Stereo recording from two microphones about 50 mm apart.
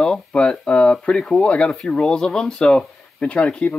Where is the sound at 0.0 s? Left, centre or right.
Centre.